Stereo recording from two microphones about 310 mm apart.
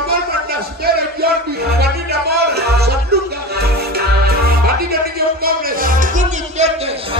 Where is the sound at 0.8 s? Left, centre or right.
Right.